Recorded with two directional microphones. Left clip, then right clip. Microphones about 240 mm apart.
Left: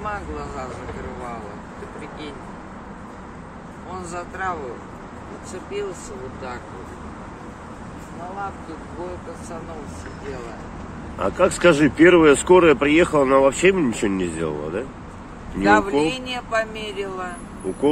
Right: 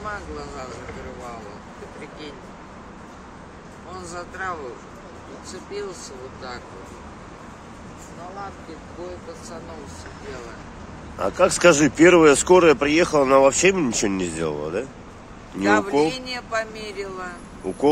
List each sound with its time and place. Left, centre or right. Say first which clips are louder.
0.0 s speech: left 3 dB; centre
3.9 s speech: left 3 dB; centre
11.1 s speech: even; centre